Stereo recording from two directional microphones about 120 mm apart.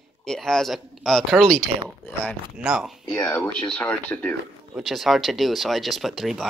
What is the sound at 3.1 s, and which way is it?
Speech, 15° left (ahead or behind).